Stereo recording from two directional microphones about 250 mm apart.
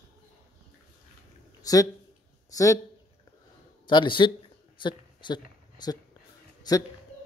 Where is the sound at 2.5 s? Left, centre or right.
Centre.